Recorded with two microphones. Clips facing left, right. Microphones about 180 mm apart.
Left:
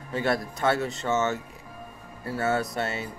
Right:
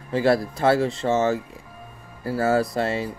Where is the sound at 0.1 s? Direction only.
30° right (ahead or behind).